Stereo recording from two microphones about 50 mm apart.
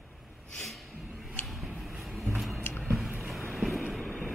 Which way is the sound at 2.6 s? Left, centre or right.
Left.